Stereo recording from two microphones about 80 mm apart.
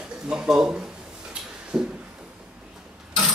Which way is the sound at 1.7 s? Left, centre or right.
Centre.